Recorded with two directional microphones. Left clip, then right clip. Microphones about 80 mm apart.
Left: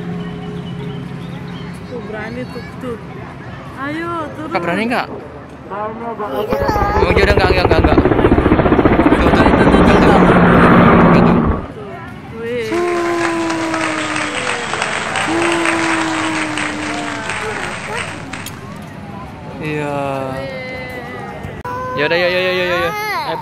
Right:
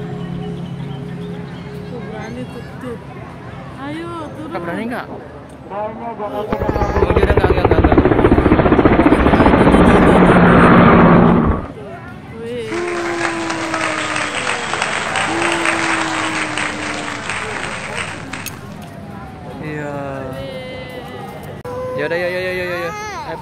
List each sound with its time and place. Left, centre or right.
3.8 s speech: centre
4.5 s speech: left
6.5 s speech: centre
7.1 s helicopter: centre
7.8 s helicopter: centre
9.2 s helicopter: centre
9.5 s helicopter: centre
11.2 s fireworks: centre
12.4 s a sound: centre
12.7 s applause: centre
19.6 s a sound: left
21.9 s a sound: centre